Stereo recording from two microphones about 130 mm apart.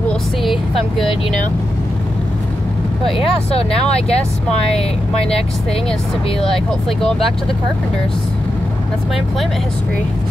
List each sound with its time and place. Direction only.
0.4 s vehicle: centre (ahead or behind)
3.5 s speech: 50° left (ahead or behind)
7.0 s speech: 5° left (ahead or behind)